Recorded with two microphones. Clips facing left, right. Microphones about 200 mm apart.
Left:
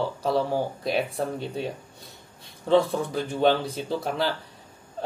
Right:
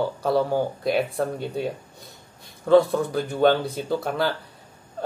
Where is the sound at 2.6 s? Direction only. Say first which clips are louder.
Right 4 dB; 30° left (ahead or behind).